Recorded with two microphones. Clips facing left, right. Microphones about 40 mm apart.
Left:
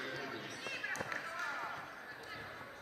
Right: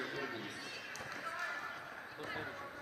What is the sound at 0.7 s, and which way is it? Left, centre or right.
Basketball bounce, left.